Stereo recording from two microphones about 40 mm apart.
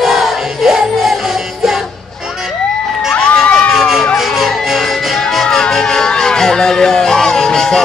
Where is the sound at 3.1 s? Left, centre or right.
Left.